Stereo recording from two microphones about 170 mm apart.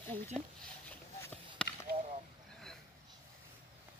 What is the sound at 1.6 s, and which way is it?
Chop, 5° left (ahead or behind).